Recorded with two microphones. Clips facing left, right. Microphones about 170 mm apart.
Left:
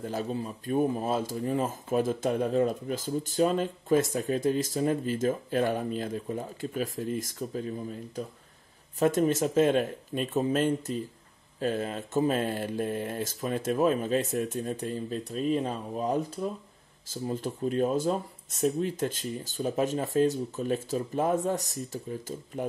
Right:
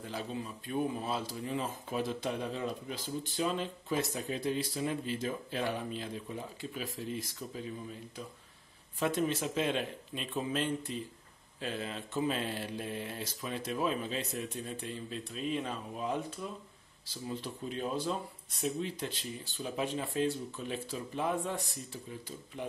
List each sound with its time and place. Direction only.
0.0 s speech: 45° left (ahead or behind)